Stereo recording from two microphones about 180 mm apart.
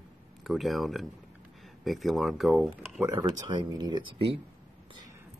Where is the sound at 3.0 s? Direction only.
20° right (ahead or behind).